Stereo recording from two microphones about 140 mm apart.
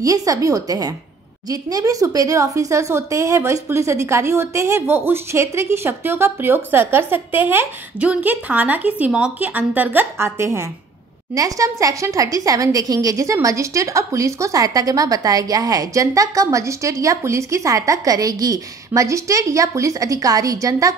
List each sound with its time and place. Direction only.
0.0 s a woman's voice: 25° right (ahead or behind)